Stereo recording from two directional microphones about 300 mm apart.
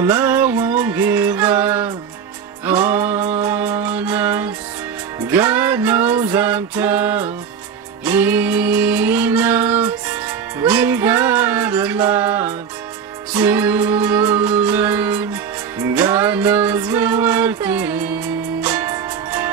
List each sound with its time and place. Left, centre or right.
0.0 s music: centre